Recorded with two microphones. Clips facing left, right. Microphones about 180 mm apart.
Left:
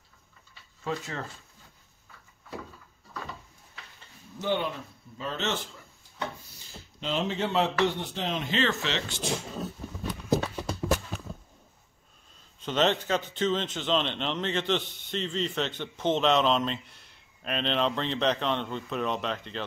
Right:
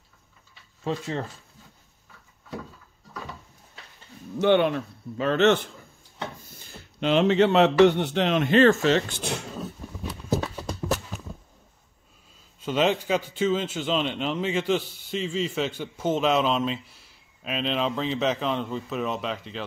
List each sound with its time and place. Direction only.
0.8 s speech: 25° right (ahead or behind)
4.4 s speech: 70° right (ahead or behind)
6.4 s a man's voice: 50° right (ahead or behind)
12.5 s a man's voice: 10° right (ahead or behind)